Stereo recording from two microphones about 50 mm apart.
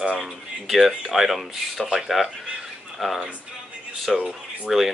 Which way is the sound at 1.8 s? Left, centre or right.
Centre.